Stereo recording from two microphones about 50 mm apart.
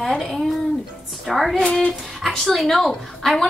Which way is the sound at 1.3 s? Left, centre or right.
Centre.